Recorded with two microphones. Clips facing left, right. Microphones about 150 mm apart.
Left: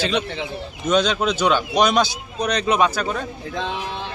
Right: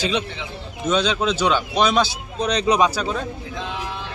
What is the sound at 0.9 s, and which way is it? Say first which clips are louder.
Speech: left 1 dB; 5° left (ahead or behind).